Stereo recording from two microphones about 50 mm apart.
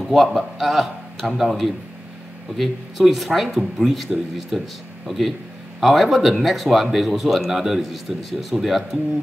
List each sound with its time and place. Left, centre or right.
0.0 s a man's voice: centre